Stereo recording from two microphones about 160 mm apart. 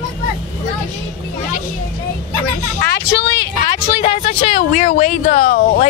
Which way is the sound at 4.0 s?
45° left (ahead or behind).